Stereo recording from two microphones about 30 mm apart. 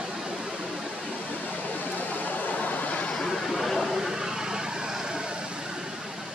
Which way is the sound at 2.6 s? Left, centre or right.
Left.